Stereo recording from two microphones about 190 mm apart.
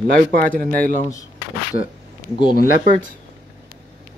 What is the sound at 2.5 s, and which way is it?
Speech, 45° left (ahead or behind).